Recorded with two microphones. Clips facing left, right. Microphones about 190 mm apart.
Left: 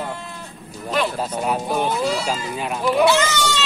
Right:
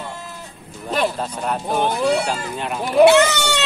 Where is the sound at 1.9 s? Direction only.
60° right (ahead or behind).